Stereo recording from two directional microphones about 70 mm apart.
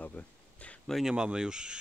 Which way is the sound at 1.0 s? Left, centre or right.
Centre.